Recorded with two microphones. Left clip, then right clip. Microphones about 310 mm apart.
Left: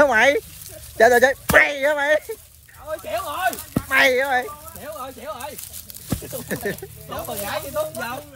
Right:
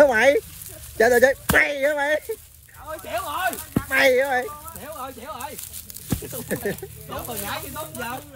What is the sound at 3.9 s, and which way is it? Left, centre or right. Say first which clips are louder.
Speech: left 1 dB; left.